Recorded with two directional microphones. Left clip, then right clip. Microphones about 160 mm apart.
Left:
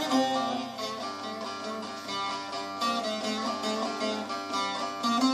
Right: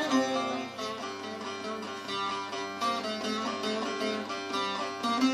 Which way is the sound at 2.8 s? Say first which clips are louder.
Left 2 dB; 15° right (ahead or behind).